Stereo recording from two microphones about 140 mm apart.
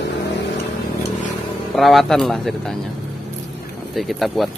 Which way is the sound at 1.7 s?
Centre (ahead or behind).